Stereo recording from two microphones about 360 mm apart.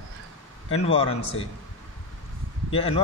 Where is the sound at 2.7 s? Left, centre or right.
Centre.